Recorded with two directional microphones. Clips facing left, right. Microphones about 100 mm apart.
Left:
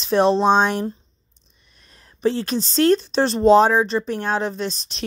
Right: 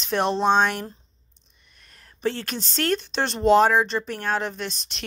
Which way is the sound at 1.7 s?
25° left (ahead or behind).